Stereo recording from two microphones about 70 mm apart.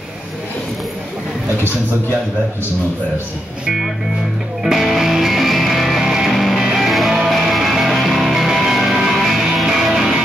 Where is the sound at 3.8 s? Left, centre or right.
Centre.